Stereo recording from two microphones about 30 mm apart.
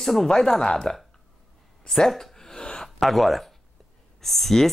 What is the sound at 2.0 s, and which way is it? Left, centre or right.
Speech, centre.